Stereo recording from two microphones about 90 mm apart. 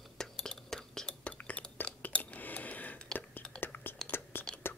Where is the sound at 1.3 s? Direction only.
15° left (ahead or behind).